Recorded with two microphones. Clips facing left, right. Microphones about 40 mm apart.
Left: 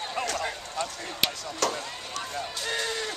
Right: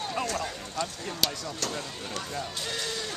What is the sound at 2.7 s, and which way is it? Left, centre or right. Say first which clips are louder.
Speech: left 7 dB; left.